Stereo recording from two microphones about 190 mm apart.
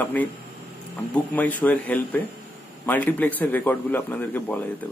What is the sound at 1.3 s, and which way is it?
A man's voice, 10° left (ahead or behind).